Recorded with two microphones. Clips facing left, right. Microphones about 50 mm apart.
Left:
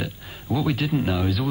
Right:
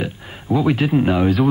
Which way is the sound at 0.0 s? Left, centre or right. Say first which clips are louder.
Right 5 dB; right.